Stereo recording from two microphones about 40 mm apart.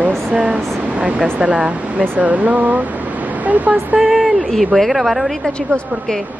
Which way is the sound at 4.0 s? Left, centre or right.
Centre.